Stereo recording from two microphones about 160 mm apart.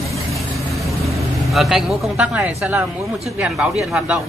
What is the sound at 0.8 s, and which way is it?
Speech, centre (ahead or behind).